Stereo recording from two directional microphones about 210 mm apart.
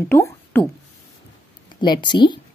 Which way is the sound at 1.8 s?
20° left (ahead or behind).